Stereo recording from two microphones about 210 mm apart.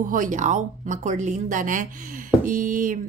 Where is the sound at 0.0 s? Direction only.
40° right (ahead or behind).